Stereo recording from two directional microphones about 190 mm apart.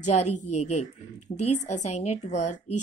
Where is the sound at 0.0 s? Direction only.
35° left (ahead or behind).